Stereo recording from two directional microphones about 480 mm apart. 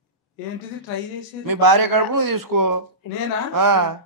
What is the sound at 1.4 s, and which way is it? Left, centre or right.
Speech, right.